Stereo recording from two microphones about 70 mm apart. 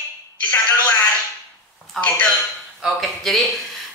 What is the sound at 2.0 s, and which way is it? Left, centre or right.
Speech, left.